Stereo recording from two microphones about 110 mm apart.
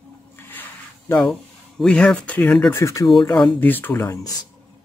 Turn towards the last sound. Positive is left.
turn(degrees=20)  # may be behind; listen again after turning